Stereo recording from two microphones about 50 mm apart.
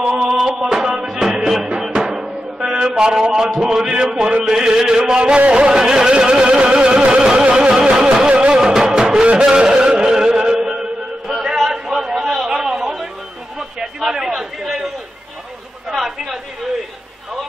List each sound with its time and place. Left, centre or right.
0.6 s music: centre
3.0 s a sound: centre
5.2 s music: right
9.6 s chant: centre
12.4 s chatter: centre
15.9 s chatter: centre